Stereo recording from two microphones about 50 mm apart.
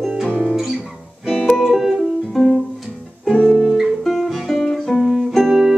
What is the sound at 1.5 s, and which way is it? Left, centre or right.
Music, centre.